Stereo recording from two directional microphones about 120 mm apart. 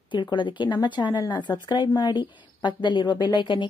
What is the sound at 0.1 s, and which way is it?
A woman's voice, 40° left (ahead or behind).